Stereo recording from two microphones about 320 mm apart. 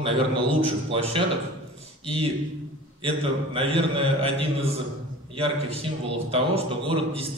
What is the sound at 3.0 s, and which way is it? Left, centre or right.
A man's voice, centre.